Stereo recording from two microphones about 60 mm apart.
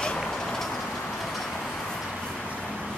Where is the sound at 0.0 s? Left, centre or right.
Centre.